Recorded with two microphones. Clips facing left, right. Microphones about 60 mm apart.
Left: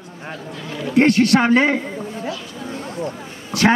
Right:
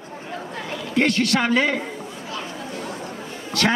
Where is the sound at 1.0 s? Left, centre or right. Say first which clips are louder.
Left 6 dB; left.